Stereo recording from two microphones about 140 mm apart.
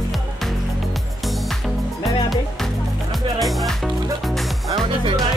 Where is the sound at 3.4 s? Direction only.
Centre (ahead or behind).